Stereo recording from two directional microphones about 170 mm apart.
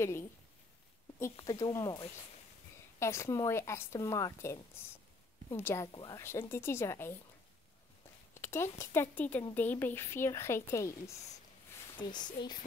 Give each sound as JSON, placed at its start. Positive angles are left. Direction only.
{"t": 1.3, "sound": "a woman's voice", "side_deg": 20}
{"t": 5.6, "sound": "a woman's voice", "side_deg": 15}
{"t": 5.9, "sound": "a woman's voice", "side_deg": 25}
{"t": 8.4, "sound": "a woman's voice", "side_deg": 15}
{"t": 12.0, "sound": "speech", "side_deg": 25}